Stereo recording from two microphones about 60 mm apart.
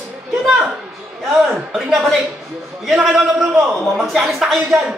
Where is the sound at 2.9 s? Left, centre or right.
Centre.